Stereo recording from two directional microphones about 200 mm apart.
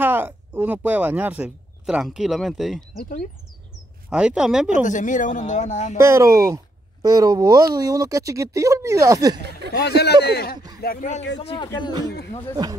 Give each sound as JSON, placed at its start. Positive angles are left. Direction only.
{"t": 0.0, "sound": "speech", "side_deg": -10}
{"t": 3.0, "sound": "speech", "side_deg": 45}
{"t": 4.1, "sound": "speech", "side_deg": -5}
{"t": 4.8, "sound": "speech", "side_deg": 40}
{"t": 5.9, "sound": "speech", "side_deg": -15}
{"t": 9.7, "sound": "speech", "side_deg": 55}
{"t": 11.5, "sound": "a man's voice", "side_deg": 20}